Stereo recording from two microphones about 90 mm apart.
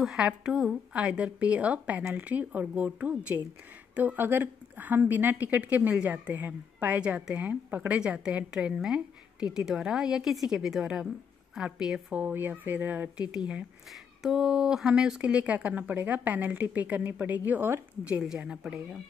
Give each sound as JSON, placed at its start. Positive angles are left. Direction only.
{"t": 0.0, "sound": "a woman's voice", "side_deg": -10}
{"t": 14.2, "sound": "a woman's voice", "side_deg": -5}